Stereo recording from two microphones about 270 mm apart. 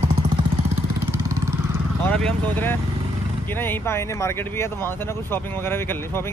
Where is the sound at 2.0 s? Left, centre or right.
Centre.